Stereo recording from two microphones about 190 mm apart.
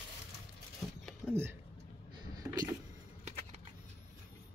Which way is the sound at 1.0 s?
10° right (ahead or behind).